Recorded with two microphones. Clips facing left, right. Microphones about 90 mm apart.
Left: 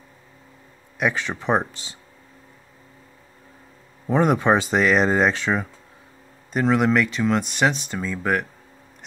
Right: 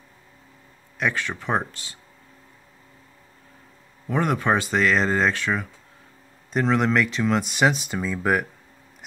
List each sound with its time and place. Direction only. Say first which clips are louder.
0.9 s speech: left 2 dB; 15° left (ahead or behind)
4.1 s speech: left 4 dB; 20° left (ahead or behind)
6.5 s speech: left 2 dB; 5° left (ahead or behind)